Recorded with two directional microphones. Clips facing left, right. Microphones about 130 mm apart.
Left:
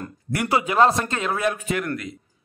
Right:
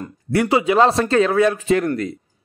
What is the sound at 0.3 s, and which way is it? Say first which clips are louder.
A man's voice: right 6 dB; 25° right (ahead or behind).